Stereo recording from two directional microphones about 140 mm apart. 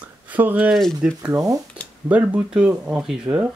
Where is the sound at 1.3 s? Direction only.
25° right (ahead or behind).